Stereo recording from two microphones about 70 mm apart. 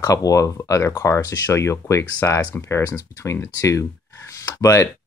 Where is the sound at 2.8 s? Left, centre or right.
Left.